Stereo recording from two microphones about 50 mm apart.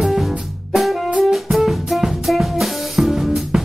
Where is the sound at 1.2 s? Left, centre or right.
Centre.